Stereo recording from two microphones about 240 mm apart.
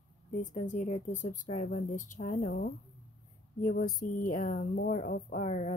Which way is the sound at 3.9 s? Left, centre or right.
Left.